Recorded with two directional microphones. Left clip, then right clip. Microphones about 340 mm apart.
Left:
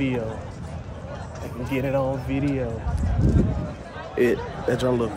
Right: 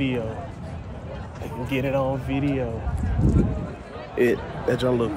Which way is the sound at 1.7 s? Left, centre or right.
Centre.